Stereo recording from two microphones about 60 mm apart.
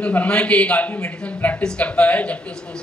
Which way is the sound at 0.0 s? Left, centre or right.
Left.